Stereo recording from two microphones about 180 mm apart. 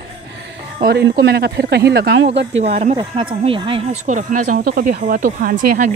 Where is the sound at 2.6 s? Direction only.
35° right (ahead or behind).